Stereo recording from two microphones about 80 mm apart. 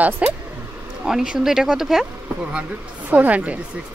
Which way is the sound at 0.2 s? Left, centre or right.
Centre.